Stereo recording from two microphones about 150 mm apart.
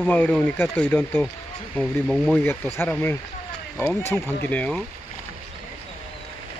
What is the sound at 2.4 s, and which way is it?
Speech, 15° left (ahead or behind).